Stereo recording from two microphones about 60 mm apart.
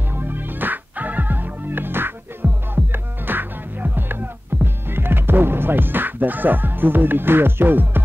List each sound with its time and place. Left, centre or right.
0.1 s music: right